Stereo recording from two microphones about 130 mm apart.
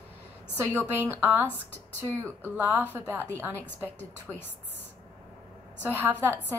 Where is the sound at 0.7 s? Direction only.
15° right (ahead or behind).